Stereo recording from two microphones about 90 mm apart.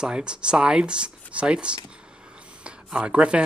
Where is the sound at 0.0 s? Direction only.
10° right (ahead or behind).